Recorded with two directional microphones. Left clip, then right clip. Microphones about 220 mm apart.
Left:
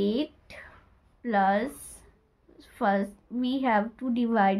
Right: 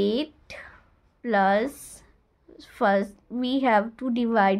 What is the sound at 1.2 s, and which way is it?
A woman's voice, 50° right (ahead or behind).